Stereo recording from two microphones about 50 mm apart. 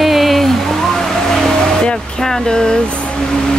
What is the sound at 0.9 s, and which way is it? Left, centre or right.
Vehicle, centre.